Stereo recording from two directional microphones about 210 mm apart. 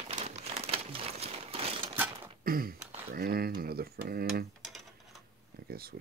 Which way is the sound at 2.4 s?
45° right (ahead or behind).